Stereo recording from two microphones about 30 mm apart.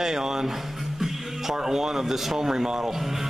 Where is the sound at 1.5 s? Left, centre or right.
Centre.